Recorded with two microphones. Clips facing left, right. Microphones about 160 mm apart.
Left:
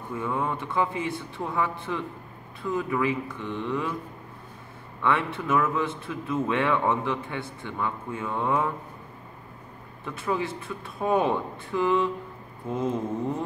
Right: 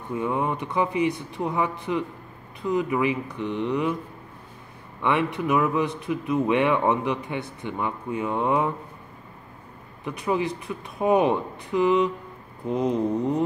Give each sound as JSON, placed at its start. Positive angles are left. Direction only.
{"t": 0.1, "sound": "a man's voice", "side_deg": -20}
{"t": 5.0, "sound": "a man's voice", "side_deg": -20}
{"t": 10.0, "sound": "a man's voice", "side_deg": -15}